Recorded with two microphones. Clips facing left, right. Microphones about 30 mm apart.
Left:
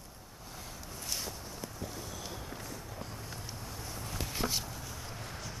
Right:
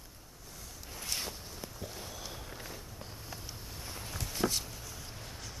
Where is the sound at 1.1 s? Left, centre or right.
Centre.